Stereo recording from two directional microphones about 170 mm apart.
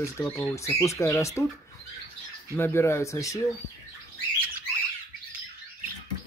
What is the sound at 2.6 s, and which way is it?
Speech, 15° left (ahead or behind).